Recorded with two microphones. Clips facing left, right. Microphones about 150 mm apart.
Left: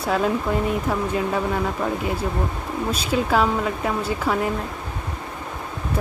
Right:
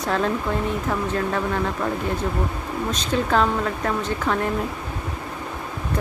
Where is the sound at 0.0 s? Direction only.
5° left (ahead or behind).